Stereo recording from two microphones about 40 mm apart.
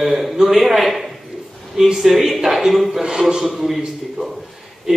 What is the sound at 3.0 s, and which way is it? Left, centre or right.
Speech, centre.